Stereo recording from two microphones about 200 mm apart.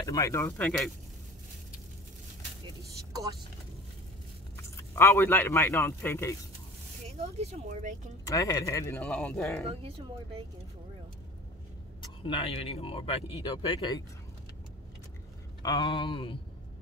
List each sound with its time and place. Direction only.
0.0 s speech: 15° left (ahead or behind)
4.6 s a man's voice: 15° left (ahead or behind)
7.1 s speech: 30° right (ahead or behind)
8.3 s speech: 15° left (ahead or behind)
9.7 s speech: 30° right (ahead or behind)
12.0 s speech: 25° left (ahead or behind)
15.6 s speech: 20° left (ahead or behind)